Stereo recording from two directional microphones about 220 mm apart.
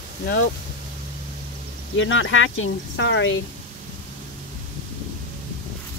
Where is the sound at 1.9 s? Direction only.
60° left (ahead or behind).